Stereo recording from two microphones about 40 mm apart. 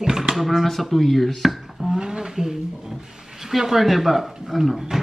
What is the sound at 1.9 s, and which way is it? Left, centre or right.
Speech, centre.